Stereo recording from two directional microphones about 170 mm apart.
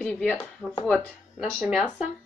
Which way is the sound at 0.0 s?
5° left (ahead or behind).